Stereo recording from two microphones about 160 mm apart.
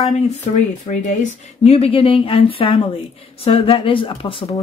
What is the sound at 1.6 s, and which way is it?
Speech, 40° left (ahead or behind).